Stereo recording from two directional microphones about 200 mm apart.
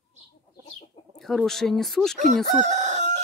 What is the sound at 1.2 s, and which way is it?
Speech, centre (ahead or behind).